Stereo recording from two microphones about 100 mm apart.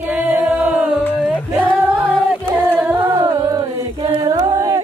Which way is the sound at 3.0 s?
35° right (ahead or behind).